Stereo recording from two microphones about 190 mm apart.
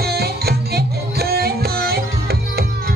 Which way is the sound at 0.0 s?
55° right (ahead or behind).